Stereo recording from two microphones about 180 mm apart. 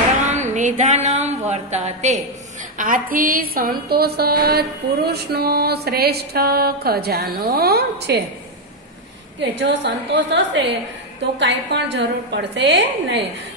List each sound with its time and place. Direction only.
0.2 s a sound: 40° right (ahead or behind)
2.8 s a woman's voice: 50° right (ahead or behind)
9.4 s a woman's voice: 80° right
11.3 s a woman's voice: 75° right (ahead or behind)